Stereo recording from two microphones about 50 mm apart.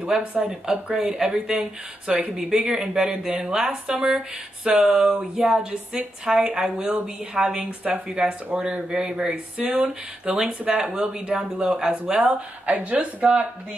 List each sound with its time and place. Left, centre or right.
0.2 s a woman's voice: right
0.5 s a woman's voice: centre; by 13.0 s right
13.2 s a woman's voice: right